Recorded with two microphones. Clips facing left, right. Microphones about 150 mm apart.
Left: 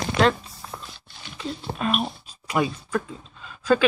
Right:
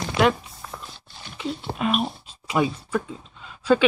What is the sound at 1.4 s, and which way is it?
Speech, 15° right (ahead or behind).